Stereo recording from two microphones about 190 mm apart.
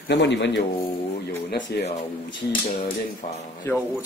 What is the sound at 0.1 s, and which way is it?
Speech, 65° left (ahead or behind).